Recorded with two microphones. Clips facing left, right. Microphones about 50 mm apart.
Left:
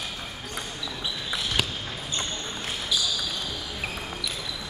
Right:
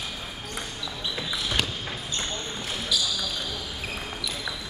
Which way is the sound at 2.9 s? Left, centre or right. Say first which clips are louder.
Even; left.